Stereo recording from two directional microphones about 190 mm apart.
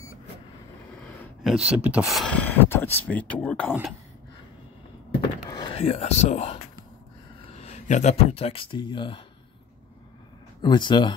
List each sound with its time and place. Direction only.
1.0 s a sound: 10° left (ahead or behind)
1.4 s speech: 5° right (ahead or behind)
5.2 s thunk: 25° left (ahead or behind)
7.5 s speech: 35° left (ahead or behind)
10.6 s speech: 25° left (ahead or behind)